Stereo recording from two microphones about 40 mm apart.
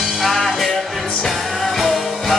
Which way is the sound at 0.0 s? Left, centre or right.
Centre.